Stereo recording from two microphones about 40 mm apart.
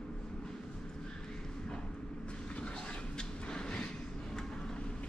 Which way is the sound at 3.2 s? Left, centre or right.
Left.